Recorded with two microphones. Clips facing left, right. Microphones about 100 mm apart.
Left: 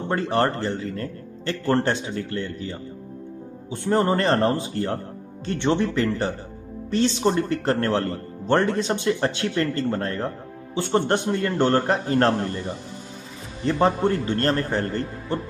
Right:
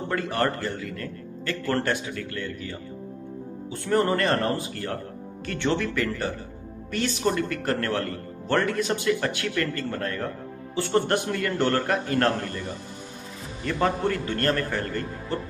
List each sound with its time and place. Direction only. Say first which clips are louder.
0.1 s speech: left 4 dB; 30° left (ahead or behind)
13.7 s speech: left 4 dB; 30° left (ahead or behind)